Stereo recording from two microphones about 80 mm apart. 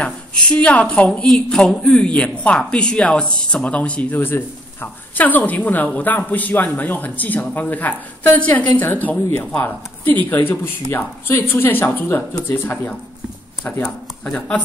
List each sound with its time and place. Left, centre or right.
0.0 s a woman's voice: centre
14.2 s speech: centre